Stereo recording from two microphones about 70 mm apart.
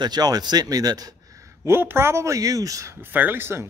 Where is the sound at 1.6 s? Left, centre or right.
Right.